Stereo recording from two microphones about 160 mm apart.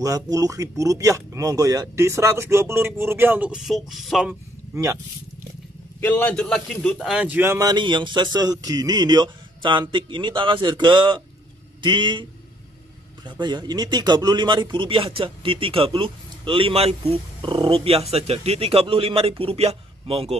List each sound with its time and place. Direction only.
0.0 s speech: 20° right (ahead or behind); by 4.4 s centre (ahead or behind)
5.9 s a man's voice: 10° left (ahead or behind); by 20.3 s 40° right (ahead or behind)